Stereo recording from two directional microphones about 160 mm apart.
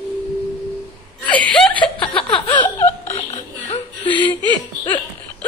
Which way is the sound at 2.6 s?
15° left (ahead or behind).